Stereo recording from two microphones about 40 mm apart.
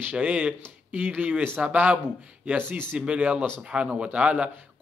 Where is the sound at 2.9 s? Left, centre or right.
Right.